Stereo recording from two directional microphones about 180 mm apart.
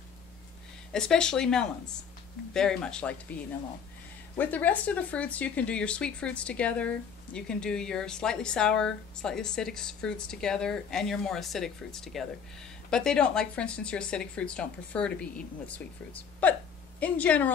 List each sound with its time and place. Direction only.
0.9 s speech: 5° left (ahead or behind)
4.4 s speech: 10° left (ahead or behind)